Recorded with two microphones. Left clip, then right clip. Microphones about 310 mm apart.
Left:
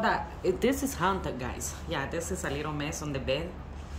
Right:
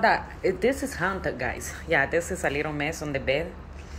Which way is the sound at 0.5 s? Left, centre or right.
Centre.